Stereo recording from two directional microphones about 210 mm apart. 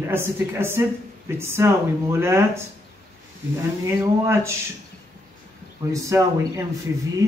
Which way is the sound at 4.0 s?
15° right (ahead or behind).